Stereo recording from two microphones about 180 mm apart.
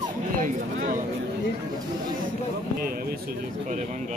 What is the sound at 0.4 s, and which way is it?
Speech, 50° right (ahead or behind).